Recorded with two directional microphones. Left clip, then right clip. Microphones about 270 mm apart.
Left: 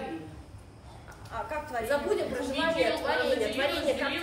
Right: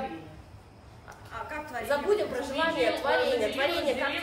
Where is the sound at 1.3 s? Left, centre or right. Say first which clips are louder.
Left 2 dB; centre.